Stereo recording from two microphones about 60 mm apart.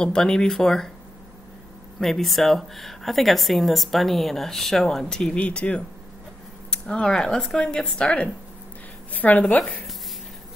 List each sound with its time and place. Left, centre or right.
0.0 s speech: centre
2.0 s speech: centre
5.4 s a woman's voice: left
9.1 s a woman's voice: left